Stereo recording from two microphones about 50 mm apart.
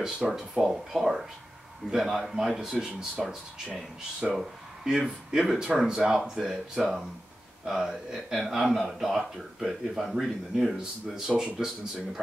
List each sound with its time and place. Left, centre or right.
0.0 s speech: centre